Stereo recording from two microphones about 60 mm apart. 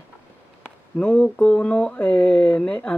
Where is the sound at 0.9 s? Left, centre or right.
Centre.